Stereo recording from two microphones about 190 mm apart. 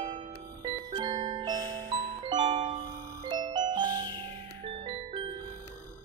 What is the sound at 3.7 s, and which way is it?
Music, 20° right (ahead or behind).